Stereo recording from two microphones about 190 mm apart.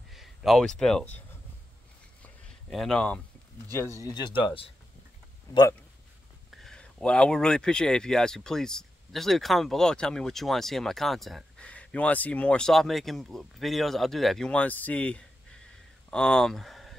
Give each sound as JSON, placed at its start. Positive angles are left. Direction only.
{"t": 0.1, "sound": "speech", "side_deg": 0}
{"t": 2.7, "sound": "speech", "side_deg": 0}
{"t": 6.6, "sound": "speech", "side_deg": 5}